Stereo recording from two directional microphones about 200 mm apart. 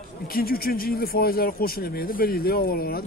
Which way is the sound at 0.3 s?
50° left (ahead or behind).